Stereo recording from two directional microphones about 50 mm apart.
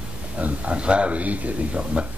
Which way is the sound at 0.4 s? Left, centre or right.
Right.